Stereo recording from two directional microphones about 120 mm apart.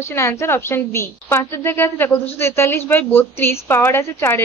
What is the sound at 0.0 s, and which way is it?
A woman's voice, 20° left (ahead or behind).